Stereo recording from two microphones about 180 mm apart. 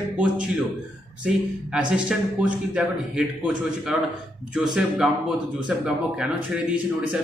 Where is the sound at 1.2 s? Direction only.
5° right (ahead or behind).